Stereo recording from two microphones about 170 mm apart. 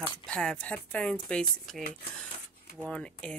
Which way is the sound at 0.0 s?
5° left (ahead or behind).